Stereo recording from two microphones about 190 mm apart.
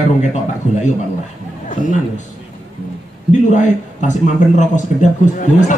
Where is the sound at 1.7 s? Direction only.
40° left (ahead or behind).